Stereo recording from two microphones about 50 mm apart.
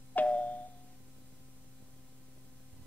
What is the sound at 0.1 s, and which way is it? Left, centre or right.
Doorbell, left.